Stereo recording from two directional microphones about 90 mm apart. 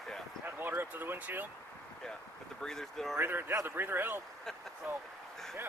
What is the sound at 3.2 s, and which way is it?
Speech, 25° right (ahead or behind).